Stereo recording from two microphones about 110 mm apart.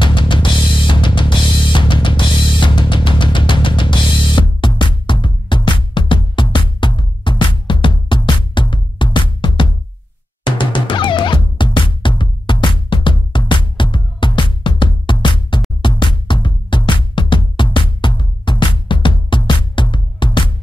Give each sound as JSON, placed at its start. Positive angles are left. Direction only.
{"t": 0.0, "sound": "music", "side_deg": 45}